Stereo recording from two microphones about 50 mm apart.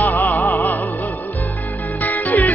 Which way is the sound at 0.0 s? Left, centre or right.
Left.